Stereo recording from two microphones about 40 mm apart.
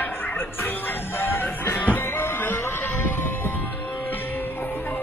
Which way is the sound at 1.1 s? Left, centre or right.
Left.